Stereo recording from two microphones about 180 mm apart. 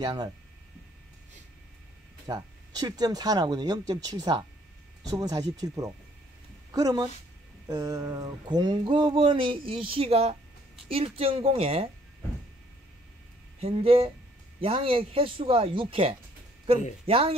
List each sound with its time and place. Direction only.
0.0 s speech: 20° right (ahead or behind)
2.2 s a woman's voice: 20° right (ahead or behind)
13.6 s speech: 35° right (ahead or behind)